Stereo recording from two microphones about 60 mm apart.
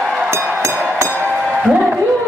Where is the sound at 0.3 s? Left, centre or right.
Right.